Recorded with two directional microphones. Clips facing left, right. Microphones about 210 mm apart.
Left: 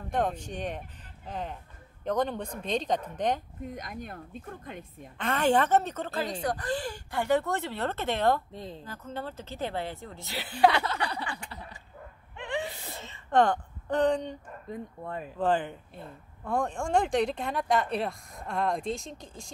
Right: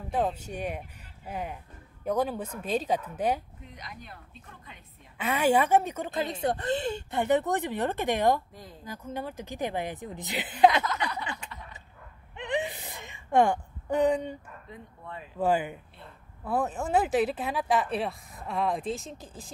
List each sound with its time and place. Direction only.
0.1 s a woman's voice: 5° right (ahead or behind)
3.6 s speech: 50° left (ahead or behind)
5.1 s a woman's voice: 10° right (ahead or behind)
8.5 s speech: 25° left (ahead or behind)
8.8 s a woman's voice: 10° right (ahead or behind)
10.8 s a sound: 30° left (ahead or behind)
12.4 s gasp: 20° right (ahead or behind)
14.7 s speech: 45° left (ahead or behind)
15.3 s a woman's voice: 10° right (ahead or behind)